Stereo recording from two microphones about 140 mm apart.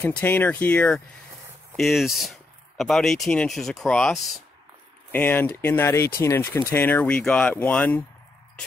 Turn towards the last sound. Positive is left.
turn(degrees=10)  # may be behind; listen again after turning